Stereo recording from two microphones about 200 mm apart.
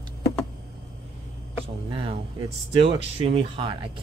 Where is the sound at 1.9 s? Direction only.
25° right (ahead or behind).